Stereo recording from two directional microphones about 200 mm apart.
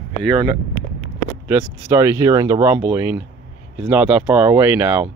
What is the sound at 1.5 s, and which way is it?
Speech, 10° right (ahead or behind).